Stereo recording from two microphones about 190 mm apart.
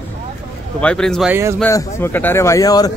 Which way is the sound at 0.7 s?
5° left (ahead or behind).